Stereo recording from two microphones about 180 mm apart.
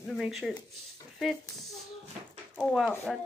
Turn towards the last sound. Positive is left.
turn(degrees=0)  # may be behind; listen again after turning